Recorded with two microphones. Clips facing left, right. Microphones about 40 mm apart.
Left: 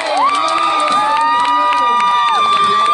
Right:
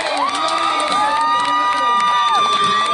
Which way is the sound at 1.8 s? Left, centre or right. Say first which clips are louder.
Left 3 dB; left.